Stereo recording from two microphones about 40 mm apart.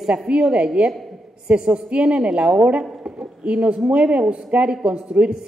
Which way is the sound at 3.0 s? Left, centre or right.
Right.